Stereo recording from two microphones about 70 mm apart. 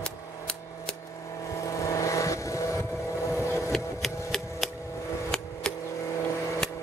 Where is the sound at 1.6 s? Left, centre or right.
Left.